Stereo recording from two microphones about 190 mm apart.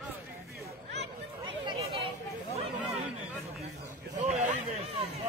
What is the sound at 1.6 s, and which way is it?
Chatter, 30° right (ahead or behind).